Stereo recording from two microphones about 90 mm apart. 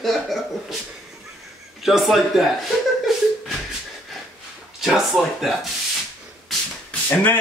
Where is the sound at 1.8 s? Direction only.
Centre (ahead or behind).